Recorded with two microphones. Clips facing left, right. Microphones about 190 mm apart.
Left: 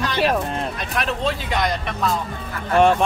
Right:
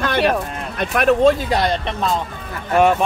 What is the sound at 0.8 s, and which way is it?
Speech, 55° right (ahead or behind).